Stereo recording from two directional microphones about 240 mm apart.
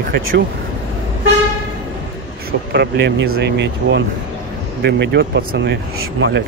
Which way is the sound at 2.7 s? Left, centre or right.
Right.